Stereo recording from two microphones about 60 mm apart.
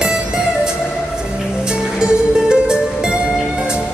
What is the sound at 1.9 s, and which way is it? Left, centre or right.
Music, centre.